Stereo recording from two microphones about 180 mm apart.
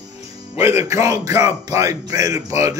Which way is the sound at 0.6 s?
15° right (ahead or behind).